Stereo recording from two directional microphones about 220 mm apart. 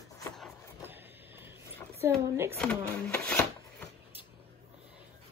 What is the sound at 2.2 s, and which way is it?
Speech, 10° right (ahead or behind).